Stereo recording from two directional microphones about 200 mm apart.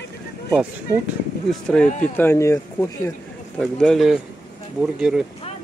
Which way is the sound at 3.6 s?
Centre (ahead or behind).